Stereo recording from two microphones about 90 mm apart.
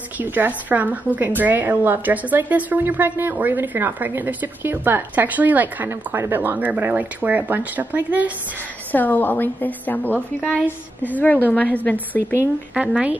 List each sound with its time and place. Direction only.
0.2 s a woman's voice: 20° right (ahead or behind)
8.9 s a woman's voice: 20° left (ahead or behind)
12.7 s a woman's voice: 10° right (ahead or behind)